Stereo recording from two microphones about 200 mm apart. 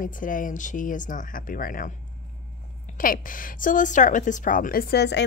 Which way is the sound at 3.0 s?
45° left (ahead or behind).